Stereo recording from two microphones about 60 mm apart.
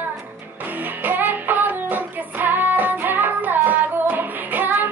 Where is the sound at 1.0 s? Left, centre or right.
Right.